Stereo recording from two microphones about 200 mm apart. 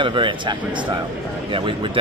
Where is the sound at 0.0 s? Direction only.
25° right (ahead or behind).